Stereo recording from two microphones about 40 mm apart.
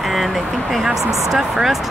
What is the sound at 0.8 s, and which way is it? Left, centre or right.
Speech, centre.